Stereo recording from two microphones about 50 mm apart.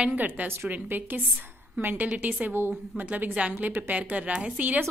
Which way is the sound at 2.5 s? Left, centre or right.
Right.